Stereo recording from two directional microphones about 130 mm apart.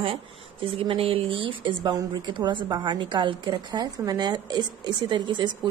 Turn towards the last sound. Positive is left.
turn(degrees=-35)  # may be behind; listen again after turning